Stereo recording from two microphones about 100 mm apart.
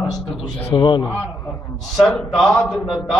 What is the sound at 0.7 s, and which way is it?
Speech, 50° left (ahead or behind).